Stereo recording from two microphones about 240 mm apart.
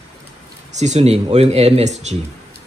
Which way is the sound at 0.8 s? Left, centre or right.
Right.